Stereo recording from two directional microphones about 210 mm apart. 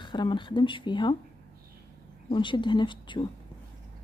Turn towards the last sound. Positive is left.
turn(degrees=20)  # may be behind; listen again after turning